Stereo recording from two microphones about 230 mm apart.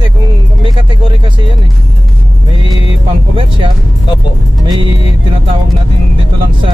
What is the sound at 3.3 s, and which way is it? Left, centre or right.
Speech, right.